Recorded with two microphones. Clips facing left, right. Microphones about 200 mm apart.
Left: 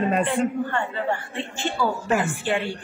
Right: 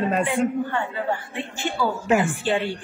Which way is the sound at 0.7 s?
15° right (ahead or behind).